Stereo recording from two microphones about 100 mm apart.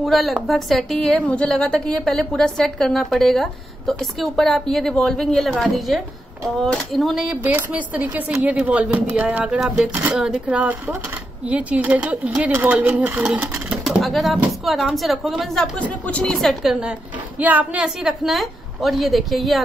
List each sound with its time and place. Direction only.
0.0 s a woman's voice: centre (ahead or behind)
7.4 s a woman's voice: 15° right (ahead or behind); by 16.7 s 5° left (ahead or behind)
17.4 s speech: 15° right (ahead or behind)
17.8 s a woman's voice: 5° right (ahead or behind)